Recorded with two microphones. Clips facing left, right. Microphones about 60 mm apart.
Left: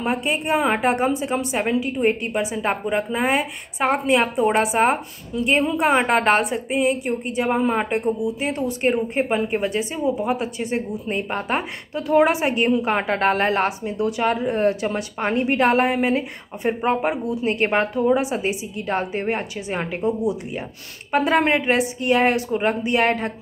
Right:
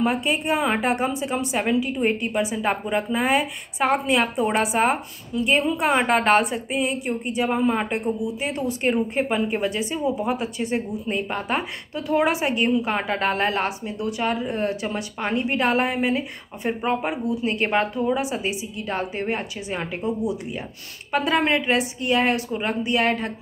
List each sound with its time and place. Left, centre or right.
0.0 s a woman's voice: left
21.1 s speech: left